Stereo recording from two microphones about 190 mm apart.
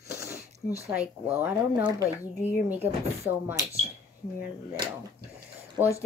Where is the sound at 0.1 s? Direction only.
15° right (ahead or behind).